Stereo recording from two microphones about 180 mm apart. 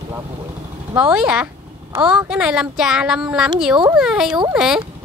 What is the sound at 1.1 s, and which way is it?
Speech, 5° right (ahead or behind).